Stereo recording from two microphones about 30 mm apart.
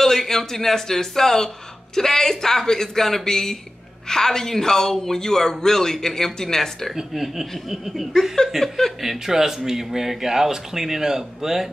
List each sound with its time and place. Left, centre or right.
0.0 s a man's voice: centre
7.2 s speech: centre
8.5 s speech: centre
9.0 s speech: centre